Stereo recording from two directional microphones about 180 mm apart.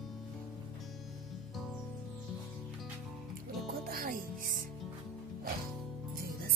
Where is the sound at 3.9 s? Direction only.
50° right (ahead or behind).